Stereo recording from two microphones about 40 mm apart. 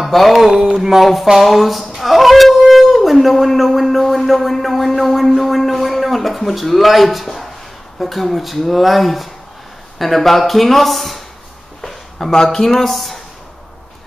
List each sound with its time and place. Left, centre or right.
0.0 s speech: centre
0.4 s speech: centre
2.0 s dog: centre
8.0 s speech: centre